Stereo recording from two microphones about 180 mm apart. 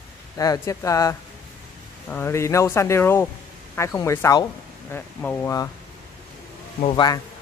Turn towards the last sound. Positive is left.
turn(degrees=25)  # may be behind; listen again after turning